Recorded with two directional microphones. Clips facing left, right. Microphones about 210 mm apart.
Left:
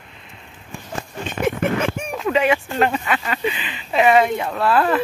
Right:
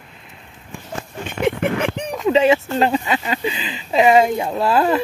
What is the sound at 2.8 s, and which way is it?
Speech, 25° right (ahead or behind).